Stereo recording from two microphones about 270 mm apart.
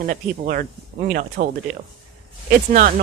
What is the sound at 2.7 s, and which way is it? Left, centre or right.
Speech, right.